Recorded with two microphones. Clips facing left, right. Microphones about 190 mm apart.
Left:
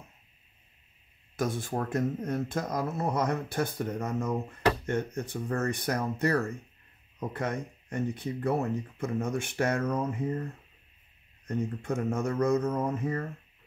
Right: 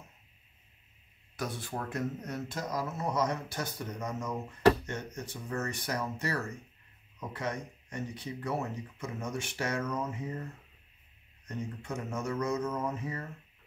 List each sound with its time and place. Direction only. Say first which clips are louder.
1.3 s speech: left 6 dB; 50° left (ahead or behind)
11.4 s speech: left 7 dB; 55° left (ahead or behind)